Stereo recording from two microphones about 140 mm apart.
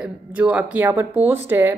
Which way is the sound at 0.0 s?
10° right (ahead or behind).